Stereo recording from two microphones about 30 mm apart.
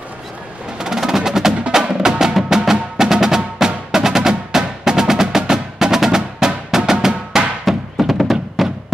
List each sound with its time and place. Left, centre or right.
0.7 s music: centre
1.7 s percussion: centre
2.5 s music: centre
6.9 s drum: centre
7.7 s music: centre